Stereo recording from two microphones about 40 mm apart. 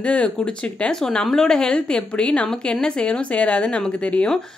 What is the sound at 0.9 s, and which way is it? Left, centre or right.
A woman's voice, centre.